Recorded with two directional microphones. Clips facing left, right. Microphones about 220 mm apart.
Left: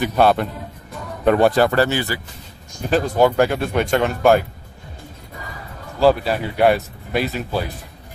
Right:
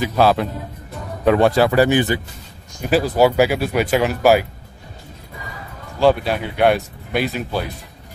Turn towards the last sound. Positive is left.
turn(degrees=0)  # may be behind; listen again after turning